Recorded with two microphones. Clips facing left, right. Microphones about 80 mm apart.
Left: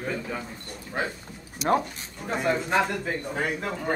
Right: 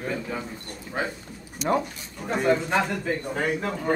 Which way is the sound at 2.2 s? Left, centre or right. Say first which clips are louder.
Right 3 dB; centre.